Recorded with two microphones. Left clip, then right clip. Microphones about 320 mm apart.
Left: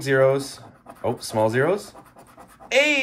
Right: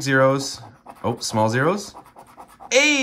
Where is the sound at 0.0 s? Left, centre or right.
Right.